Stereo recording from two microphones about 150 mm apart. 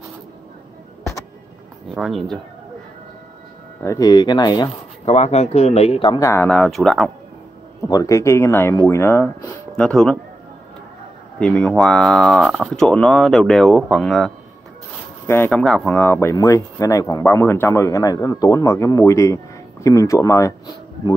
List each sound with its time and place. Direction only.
2.0 s speech: centre (ahead or behind)
3.8 s speech: 20° left (ahead or behind)
5.0 s speech: 45° left (ahead or behind)
6.1 s speech: 20° left (ahead or behind)
6.4 s speech: 5° left (ahead or behind)
7.9 s speech: 20° left (ahead or behind); by 10.1 s 5° left (ahead or behind)
11.3 s speech: 5° left (ahead or behind)
15.2 s speech: 15° left (ahead or behind)